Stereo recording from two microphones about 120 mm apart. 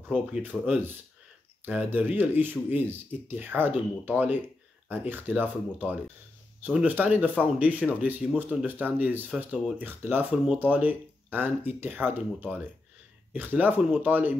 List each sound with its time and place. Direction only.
0.1 s speech: 15° right (ahead or behind)